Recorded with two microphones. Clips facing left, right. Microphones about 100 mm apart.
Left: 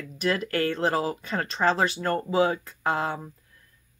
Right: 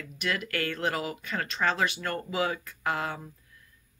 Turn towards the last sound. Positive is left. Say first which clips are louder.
# left 4 dB
turn(degrees=30)  # may be behind; listen again after turning